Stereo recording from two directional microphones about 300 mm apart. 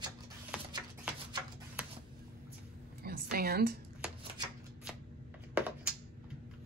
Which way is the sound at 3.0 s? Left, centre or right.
Right.